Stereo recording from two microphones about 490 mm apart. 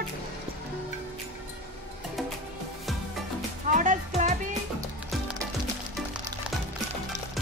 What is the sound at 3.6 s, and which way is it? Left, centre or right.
Speech, centre.